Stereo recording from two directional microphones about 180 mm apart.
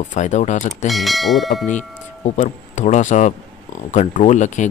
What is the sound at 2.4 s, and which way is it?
Speech, 40° left (ahead or behind).